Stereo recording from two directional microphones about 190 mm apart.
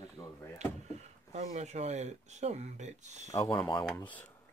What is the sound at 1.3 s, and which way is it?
Speech, 40° right (ahead or behind).